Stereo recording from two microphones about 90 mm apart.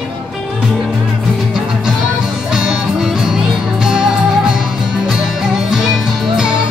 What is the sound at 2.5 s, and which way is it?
Music, 5° right (ahead or behind).